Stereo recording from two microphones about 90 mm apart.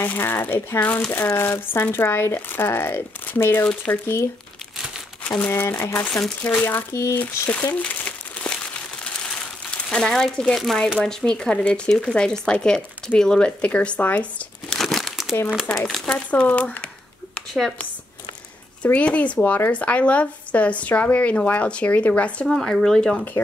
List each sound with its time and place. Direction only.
0.0 s speech: 25° left (ahead or behind)
5.5 s speech: 30° left (ahead or behind)
6.0 s speech: 5° left (ahead or behind)
6.6 s speech: 30° left (ahead or behind)
7.2 s crumpling: 15° left (ahead or behind)
9.8 s speech: 5° left (ahead or behind)
14.7 s crumpling: centre (ahead or behind)
15.7 s speech: 10° left (ahead or behind)
18.8 s speech: 15° left (ahead or behind)
22.5 s speech: 5° left (ahead or behind)